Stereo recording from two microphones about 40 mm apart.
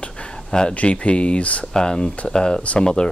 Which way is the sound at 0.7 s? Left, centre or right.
Left.